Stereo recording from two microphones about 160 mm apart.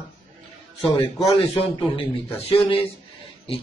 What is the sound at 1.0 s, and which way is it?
A man's voice, 35° left (ahead or behind).